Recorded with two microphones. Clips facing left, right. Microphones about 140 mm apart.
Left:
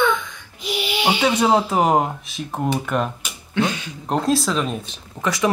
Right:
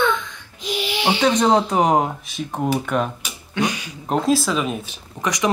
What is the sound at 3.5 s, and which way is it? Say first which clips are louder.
Speech: left 1 dB; 15° right (ahead or behind).